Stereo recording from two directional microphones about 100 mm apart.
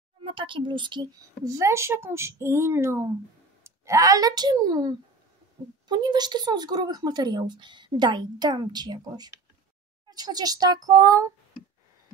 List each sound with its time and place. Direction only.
0.2 s speech: 60° right (ahead or behind)
1.4 s a woman's voice: 35° right (ahead or behind)